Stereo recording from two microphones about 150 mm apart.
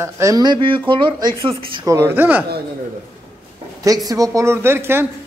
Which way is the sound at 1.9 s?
20° right (ahead or behind).